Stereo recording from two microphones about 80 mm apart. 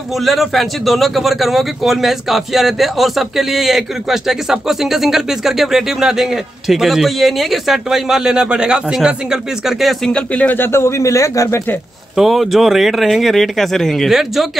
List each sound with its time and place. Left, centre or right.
0.2 s speech: centre
10.1 s a man's voice: centre; by 11.6 s left
12.2 s speech: centre